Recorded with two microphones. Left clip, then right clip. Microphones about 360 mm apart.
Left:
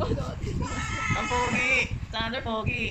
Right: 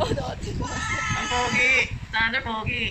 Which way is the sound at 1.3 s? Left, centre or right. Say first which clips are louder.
Right 5 dB; centre.